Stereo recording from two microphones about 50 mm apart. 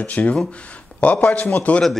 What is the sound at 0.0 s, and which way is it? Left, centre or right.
A man's voice, left.